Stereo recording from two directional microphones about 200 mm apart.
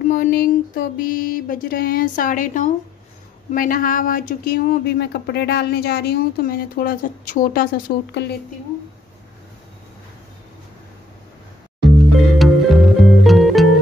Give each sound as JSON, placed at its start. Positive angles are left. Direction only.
{"t": 0.0, "sound": "speech", "side_deg": 45}
{"t": 12.4, "sound": "music", "side_deg": 0}